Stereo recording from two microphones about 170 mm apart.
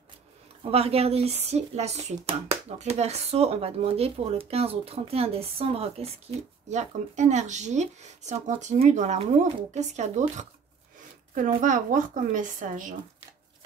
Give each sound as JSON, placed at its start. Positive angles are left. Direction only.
{"t": 0.7, "sound": "speech", "side_deg": -35}